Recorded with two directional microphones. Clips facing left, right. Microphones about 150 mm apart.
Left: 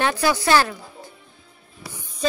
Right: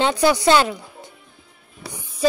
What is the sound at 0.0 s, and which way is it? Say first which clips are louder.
A woman's voice: right 4 dB; 20° right (ahead or behind).